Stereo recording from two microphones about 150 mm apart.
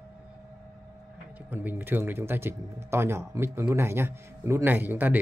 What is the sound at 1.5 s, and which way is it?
Speech, 10° right (ahead or behind).